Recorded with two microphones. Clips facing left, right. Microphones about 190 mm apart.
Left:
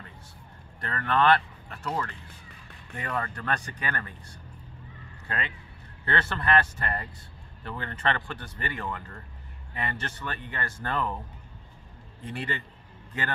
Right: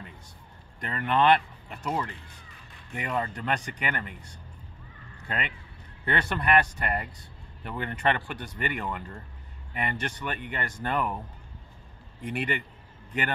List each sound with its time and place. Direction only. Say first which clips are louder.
0.7 s speech: right 1 dB; 15° right (ahead or behind)
6.0 s speech: right 1 dB; 15° right (ahead or behind)
12.2 s speech: right 4 dB; 15° right (ahead or behind)